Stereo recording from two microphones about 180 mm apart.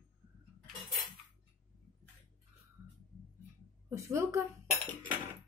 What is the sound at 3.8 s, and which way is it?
Speech, 15° right (ahead or behind).